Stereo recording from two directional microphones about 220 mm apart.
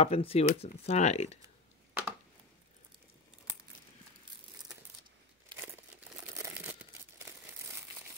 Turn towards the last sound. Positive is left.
turn(degrees=-10)  # may be behind; listen again after turning